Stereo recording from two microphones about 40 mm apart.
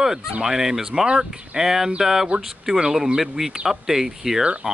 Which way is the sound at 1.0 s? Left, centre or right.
Right.